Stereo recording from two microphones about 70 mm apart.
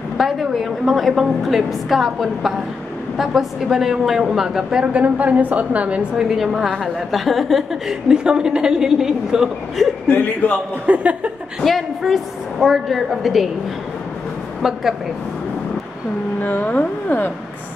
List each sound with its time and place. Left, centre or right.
0.2 s a woman's voice: centre
4.9 s a woman's voice: centre
6.2 s a woman's voice: centre
10.0 s speech: left
10.9 s speech: centre
11.6 s a woman's voice: centre
14.6 s a woman's voice: centre
16.3 s speech: left